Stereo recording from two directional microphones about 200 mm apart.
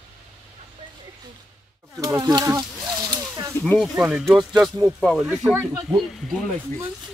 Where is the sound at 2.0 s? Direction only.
20° right (ahead or behind).